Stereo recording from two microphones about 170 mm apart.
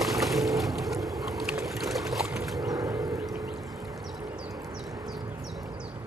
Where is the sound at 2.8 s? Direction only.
20° right (ahead or behind).